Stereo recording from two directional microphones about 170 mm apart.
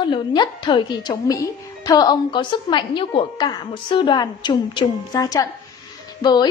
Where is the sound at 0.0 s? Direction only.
25° left (ahead or behind).